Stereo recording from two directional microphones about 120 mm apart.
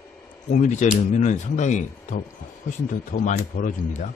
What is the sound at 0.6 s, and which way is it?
Speech, 85° left.